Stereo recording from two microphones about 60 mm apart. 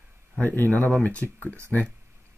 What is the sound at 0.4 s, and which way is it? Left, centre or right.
Speech, left.